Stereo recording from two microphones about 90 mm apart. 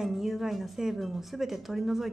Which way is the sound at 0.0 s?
5° right (ahead or behind).